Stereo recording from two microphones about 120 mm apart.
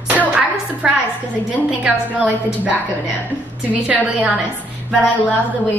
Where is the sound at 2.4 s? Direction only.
5° right (ahead or behind).